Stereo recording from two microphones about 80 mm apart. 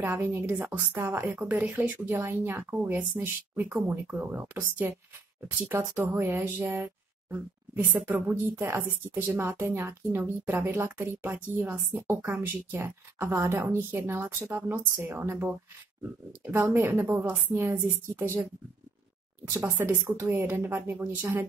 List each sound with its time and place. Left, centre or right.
0.0 s a woman's voice: right
1.5 s a woman's voice: centre
19.5 s a woman's voice: centre